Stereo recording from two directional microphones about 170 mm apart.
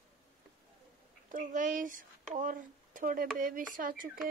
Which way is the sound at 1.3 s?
50° right (ahead or behind).